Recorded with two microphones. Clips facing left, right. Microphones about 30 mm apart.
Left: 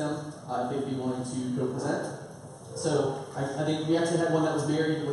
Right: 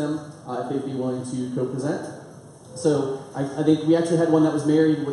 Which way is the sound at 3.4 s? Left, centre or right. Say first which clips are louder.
Right 10 dB; centre.